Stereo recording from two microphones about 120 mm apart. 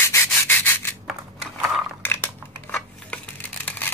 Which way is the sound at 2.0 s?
15° left (ahead or behind).